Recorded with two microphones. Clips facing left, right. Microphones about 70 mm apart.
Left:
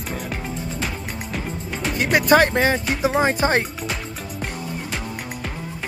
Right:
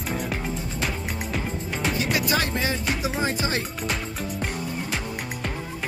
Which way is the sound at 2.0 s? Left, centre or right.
Left.